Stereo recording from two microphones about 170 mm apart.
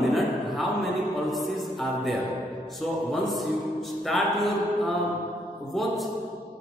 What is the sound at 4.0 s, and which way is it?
Mantra, centre (ahead or behind).